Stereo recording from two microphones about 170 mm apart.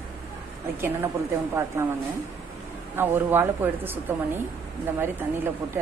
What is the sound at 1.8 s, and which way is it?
Speech, 15° right (ahead or behind).